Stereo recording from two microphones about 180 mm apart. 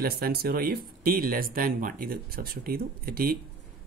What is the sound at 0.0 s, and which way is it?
Speech, 60° right (ahead or behind).